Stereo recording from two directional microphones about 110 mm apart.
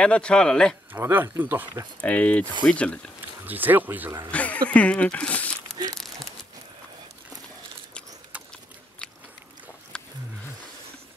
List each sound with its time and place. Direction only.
0.0 s a man's voice: 10° left (ahead or behind)
0.9 s speech: 20° right (ahead or behind)
2.0 s a man's voice: 10° left (ahead or behind)
3.4 s speech: 15° right (ahead or behind)
4.3 s speech: 10° left (ahead or behind)
5.9 s crumpling: centre (ahead or behind)
9.9 s wild animals: 10° left (ahead or behind)